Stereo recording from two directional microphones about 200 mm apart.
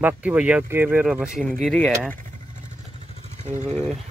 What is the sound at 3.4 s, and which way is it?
Vehicle, 35° right (ahead or behind).